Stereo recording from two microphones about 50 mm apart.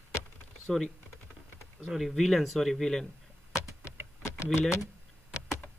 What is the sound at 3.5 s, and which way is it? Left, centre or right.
Vehicle, left.